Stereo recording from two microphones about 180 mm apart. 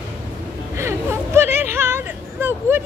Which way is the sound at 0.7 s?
15° right (ahead or behind).